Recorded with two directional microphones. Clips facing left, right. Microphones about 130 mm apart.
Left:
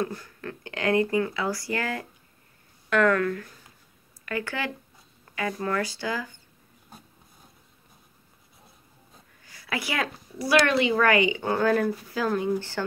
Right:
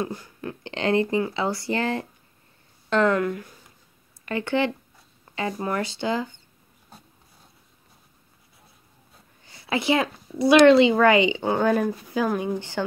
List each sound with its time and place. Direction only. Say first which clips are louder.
0.0 s a woman's voice: right 1 dB; 15° right (ahead or behind)
9.4 s a woman's voice: right 5 dB; 25° right (ahead or behind)